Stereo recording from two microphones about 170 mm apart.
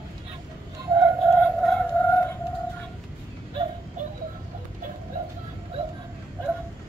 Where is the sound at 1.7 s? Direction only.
10° left (ahead or behind).